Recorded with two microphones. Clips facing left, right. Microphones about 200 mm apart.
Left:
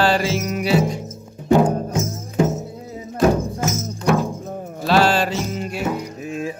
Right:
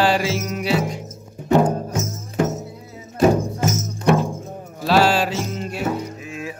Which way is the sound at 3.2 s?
5° right (ahead or behind).